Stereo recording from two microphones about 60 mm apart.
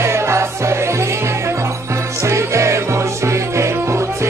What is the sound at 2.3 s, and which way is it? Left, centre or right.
Music, right.